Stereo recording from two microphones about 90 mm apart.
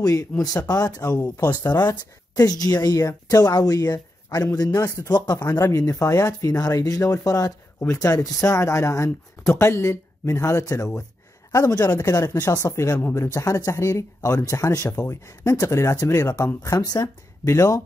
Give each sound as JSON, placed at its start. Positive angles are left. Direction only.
{"t": 0.0, "sound": "speech", "side_deg": 45}
{"t": 5.1, "sound": "speech", "side_deg": 50}
{"t": 5.7, "sound": "speech", "side_deg": 35}
{"t": 7.8, "sound": "speech", "side_deg": 30}
{"t": 17.5, "sound": "speech", "side_deg": 35}